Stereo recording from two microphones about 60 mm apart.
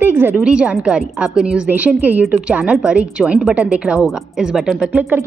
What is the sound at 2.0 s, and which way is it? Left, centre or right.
A woman's voice, right.